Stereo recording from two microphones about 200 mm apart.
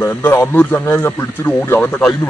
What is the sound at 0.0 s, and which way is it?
Speech, 15° left (ahead or behind).